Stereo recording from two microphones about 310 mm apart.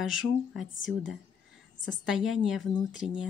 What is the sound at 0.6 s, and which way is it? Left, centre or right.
Speech, left.